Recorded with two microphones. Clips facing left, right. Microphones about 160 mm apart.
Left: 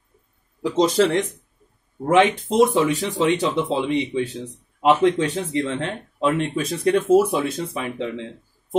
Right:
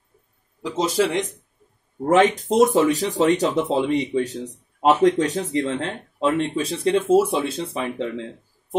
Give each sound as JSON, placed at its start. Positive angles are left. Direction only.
{"t": 0.6, "sound": "a man's voice", "side_deg": 0}
{"t": 2.0, "sound": "speech", "side_deg": -40}